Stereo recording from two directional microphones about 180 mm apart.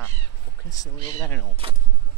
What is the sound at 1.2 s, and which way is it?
Speech, 10° left (ahead or behind).